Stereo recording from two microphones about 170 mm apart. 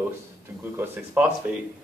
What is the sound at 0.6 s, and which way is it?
Speech, 10° right (ahead or behind).